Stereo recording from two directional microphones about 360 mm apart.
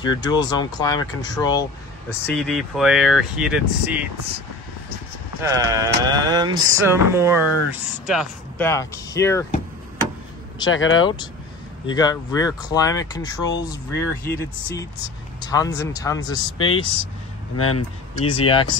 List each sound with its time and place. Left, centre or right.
0.0 s speech: centre
5.4 s speech: centre
10.7 s speech: left
11.8 s speech: centre
17.6 s speech: left
18.1 s speech: centre